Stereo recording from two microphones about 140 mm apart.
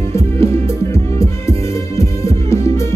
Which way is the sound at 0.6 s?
20° left (ahead or behind).